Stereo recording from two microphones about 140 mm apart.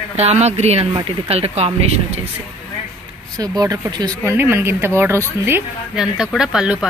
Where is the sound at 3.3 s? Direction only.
30° right (ahead or behind).